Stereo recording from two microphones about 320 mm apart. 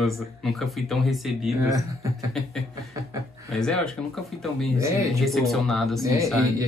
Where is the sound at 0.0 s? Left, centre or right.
Centre.